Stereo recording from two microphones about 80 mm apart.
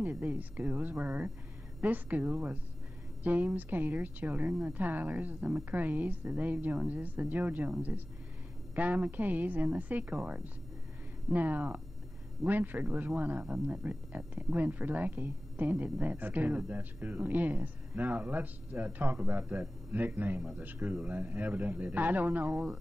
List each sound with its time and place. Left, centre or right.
0.0 s speech: centre
8.7 s speech: centre